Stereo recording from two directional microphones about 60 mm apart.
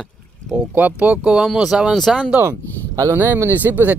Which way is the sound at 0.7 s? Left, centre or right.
Right.